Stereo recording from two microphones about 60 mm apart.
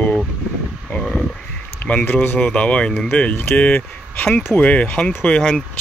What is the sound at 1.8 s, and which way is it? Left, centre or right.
Speech, left.